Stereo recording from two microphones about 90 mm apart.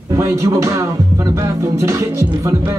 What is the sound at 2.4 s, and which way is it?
Speech, 30° right (ahead or behind).